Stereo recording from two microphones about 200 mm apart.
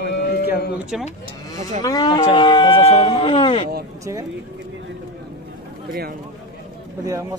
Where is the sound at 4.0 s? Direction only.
15° right (ahead or behind).